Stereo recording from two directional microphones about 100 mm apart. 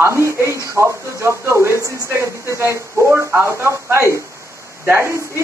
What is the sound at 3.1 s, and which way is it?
Speech, 15° right (ahead or behind).